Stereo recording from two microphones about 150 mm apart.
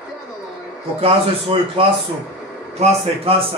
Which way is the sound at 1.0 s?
40° right (ahead or behind).